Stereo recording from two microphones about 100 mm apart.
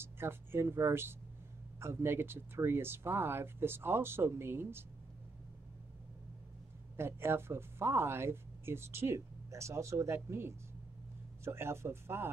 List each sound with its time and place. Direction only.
0.0 s speech: 25° right (ahead or behind)
7.0 s speech: 25° right (ahead or behind)